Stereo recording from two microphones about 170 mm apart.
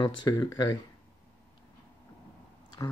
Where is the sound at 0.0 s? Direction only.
20° left (ahead or behind).